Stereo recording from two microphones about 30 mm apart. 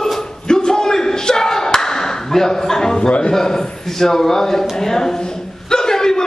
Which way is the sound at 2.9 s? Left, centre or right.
Left.